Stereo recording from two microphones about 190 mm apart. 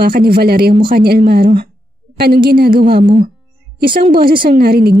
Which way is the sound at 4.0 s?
50° right (ahead or behind).